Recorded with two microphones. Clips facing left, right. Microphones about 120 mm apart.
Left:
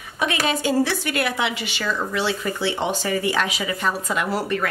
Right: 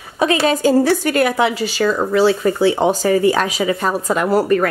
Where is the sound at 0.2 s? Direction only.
35° right (ahead or behind).